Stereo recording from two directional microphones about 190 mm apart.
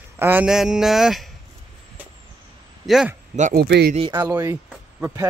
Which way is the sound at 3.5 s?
60° right (ahead or behind).